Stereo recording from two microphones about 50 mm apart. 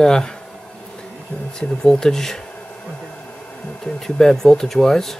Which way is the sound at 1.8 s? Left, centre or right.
Centre.